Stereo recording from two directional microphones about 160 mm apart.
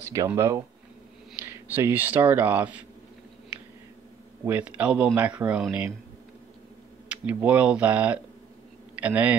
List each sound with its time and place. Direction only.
0.0 s speech: 20° right (ahead or behind)
4.5 s speech: 10° right (ahead or behind)
7.1 s speech: 10° right (ahead or behind)